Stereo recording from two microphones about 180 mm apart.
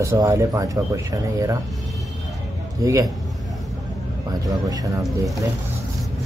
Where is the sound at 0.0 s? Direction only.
15° right (ahead or behind).